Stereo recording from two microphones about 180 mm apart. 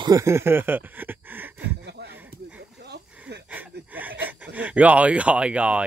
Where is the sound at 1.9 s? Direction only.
65° right (ahead or behind).